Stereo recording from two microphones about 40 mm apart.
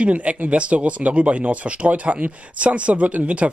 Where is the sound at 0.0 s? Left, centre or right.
Right.